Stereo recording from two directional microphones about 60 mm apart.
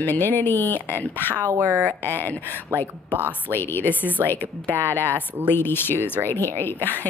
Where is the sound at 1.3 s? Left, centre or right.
Right.